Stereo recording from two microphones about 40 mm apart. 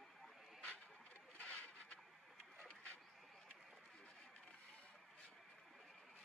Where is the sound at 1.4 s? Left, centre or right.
Left.